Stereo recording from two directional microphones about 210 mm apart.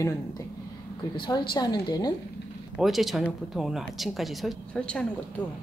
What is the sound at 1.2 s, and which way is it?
Speech, 20° left (ahead or behind).